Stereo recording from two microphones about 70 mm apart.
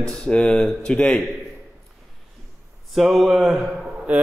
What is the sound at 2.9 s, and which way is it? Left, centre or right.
Speech, centre.